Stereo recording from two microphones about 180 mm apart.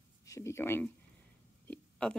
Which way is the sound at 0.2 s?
15° left (ahead or behind).